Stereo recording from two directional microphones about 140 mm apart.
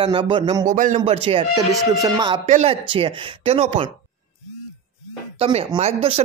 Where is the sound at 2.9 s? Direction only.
45° right (ahead or behind).